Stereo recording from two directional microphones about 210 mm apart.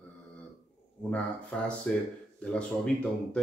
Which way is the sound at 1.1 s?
5° left (ahead or behind).